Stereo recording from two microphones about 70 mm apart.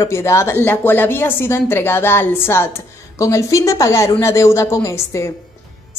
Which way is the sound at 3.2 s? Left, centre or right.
Left.